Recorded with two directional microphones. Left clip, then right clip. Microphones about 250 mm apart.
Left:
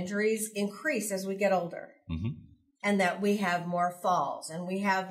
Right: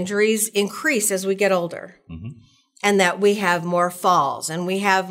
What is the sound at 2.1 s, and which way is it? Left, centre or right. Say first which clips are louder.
Speech: left 1 dB; left.